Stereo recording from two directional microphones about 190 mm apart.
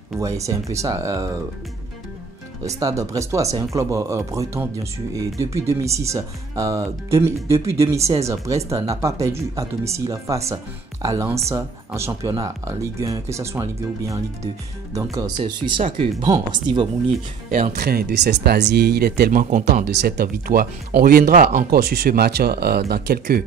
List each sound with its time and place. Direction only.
0.2 s speech: 15° right (ahead or behind)
2.6 s speech: 15° right (ahead or behind)
17.5 s speech: 40° right (ahead or behind)
17.8 s speech: 60° right (ahead or behind)